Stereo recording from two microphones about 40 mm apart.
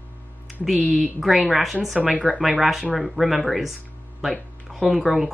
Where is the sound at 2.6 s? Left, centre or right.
Centre.